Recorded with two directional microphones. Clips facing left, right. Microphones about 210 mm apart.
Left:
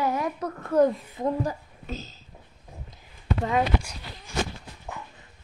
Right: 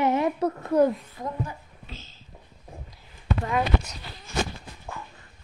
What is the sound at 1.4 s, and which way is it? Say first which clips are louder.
Speech: left 5 dB; 40° left (ahead or behind).